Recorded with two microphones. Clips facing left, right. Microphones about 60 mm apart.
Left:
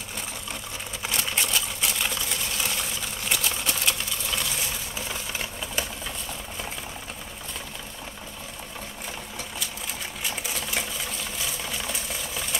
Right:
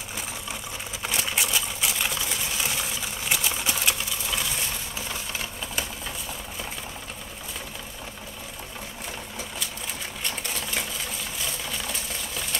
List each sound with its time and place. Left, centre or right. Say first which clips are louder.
1.0 s sewing machine: right 1 dB; centre
10.2 s sewing machine: even; centre
11.3 s a sound: even; centre